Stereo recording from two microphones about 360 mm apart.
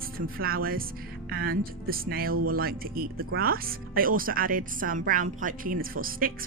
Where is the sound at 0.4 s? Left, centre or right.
Right.